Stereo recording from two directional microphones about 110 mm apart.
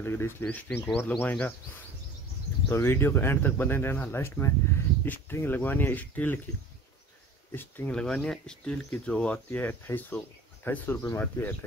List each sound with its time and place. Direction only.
0.0 s speech: 20° left (ahead or behind)
2.7 s speech: 20° left (ahead or behind)
7.5 s speech: 20° left (ahead or behind)
7.9 s speech: 5° left (ahead or behind)